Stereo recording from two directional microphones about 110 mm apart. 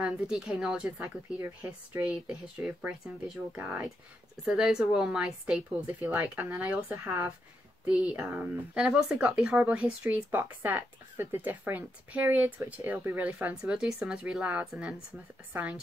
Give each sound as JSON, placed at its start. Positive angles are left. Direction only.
{"t": 0.0, "sound": "speech", "side_deg": -10}